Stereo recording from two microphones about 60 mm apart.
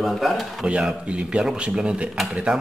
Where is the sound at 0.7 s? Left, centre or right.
Centre.